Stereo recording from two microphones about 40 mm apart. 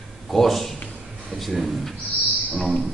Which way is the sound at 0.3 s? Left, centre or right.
Centre.